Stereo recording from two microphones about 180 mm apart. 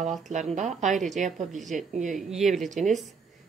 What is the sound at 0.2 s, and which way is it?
A woman's voice, 40° right (ahead or behind).